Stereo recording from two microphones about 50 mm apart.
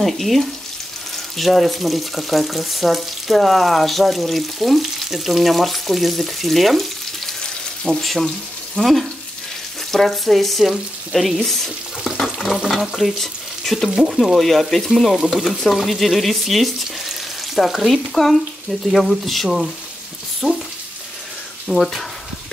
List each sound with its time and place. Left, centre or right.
0.0 s speech: centre
12.2 s stir: centre
13.8 s speech: centre
21.6 s speech: centre